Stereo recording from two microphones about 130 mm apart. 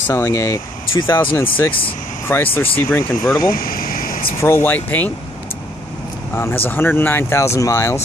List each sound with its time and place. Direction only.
0.0 s speech: 20° left (ahead or behind)
3.5 s vehicle: 90° left
4.4 s speech: 20° left (ahead or behind)
6.3 s speech: 20° left (ahead or behind)